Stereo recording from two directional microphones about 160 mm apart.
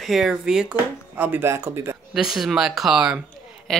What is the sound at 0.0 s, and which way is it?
Speech, centre (ahead or behind).